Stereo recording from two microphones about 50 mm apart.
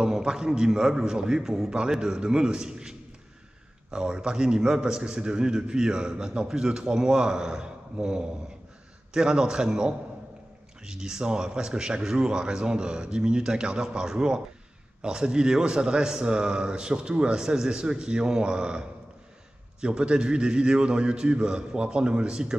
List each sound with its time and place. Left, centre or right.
0.0 s a man's voice: centre